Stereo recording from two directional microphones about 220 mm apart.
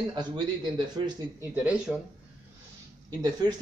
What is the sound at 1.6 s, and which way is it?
Speech, 5° right (ahead or behind).